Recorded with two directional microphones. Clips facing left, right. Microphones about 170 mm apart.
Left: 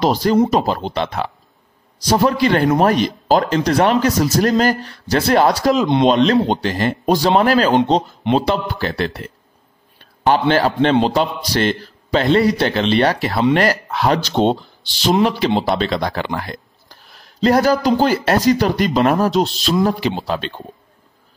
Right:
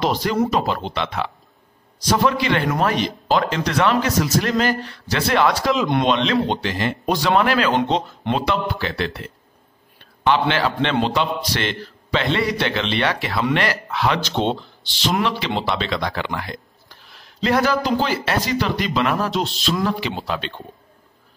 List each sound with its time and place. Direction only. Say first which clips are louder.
0.0 s speech: left 5 dB; 35° left (ahead or behind)